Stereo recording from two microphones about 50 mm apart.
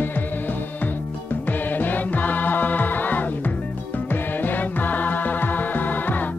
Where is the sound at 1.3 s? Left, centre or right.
Left.